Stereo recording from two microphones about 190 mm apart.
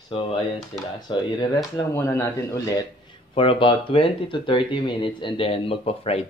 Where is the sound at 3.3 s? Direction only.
30° left (ahead or behind).